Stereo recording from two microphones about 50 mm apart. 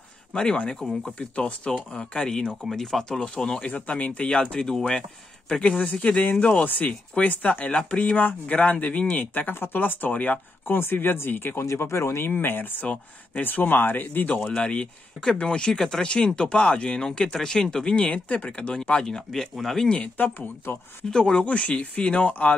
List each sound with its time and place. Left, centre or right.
0.3 s speech: centre
3.6 s speech: left
4.4 s speech: centre
5.5 s speech: left
10.8 s speech: left
11.8 s speech: left
12.3 s speech: left
12.8 s speech: left
13.4 s speech: left
14.4 s speech: centre
17.9 s speech: left
19.0 s speech: centre
20.3 s speech: left
21.1 s speech: centre